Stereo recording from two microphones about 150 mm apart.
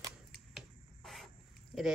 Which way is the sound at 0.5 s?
Centre (ahead or behind).